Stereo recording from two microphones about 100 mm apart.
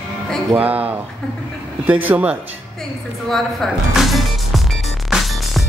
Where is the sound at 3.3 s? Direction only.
Centre (ahead or behind).